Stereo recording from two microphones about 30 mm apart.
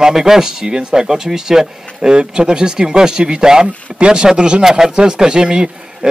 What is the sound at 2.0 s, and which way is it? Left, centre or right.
Speech, right.